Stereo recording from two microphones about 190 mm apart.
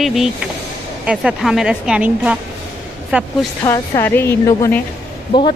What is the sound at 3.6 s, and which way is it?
Speech, 15° left (ahead or behind).